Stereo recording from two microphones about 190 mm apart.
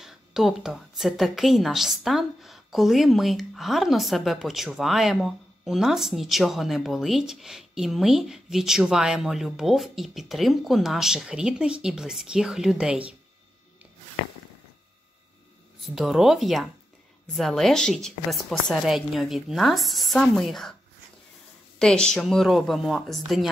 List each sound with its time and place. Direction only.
0.0 s a woman's voice: centre (ahead or behind)
15.8 s a woman's voice: centre (ahead or behind)
21.7 s a woman's voice: 5° left (ahead or behind)